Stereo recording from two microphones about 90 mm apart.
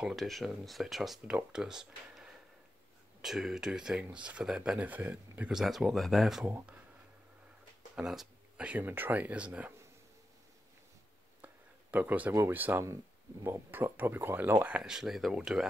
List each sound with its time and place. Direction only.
0.0 s speech: centre (ahead or behind); by 5.5 s 20° right (ahead or behind)
5.5 s speech: 5° right (ahead or behind)
7.9 s speech: 5° right (ahead or behind)
8.5 s speech: 15° right (ahead or behind)
11.4 s a sound: 20° right (ahead or behind)
12.4 s speech: 25° right (ahead or behind)
14.8 s speech: 5° right (ahead or behind)